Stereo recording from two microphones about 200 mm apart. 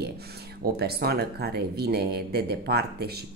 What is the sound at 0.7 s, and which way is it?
Speech, 50° right (ahead or behind).